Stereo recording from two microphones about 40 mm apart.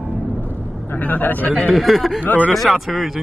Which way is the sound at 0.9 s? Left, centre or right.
Left.